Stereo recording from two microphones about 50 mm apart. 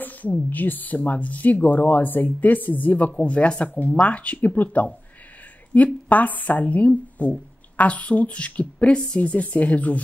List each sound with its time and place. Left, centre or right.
0.0 s speech: left
3.1 s speech: centre